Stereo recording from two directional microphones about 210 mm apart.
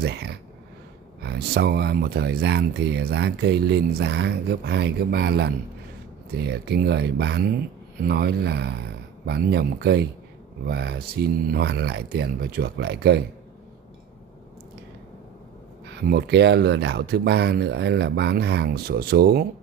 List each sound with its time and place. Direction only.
0.0 s speech: 50° right (ahead or behind)
15.9 s speech: 50° right (ahead or behind)